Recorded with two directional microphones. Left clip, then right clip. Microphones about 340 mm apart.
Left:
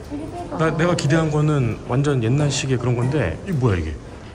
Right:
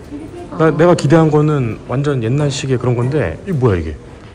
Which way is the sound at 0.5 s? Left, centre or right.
Centre.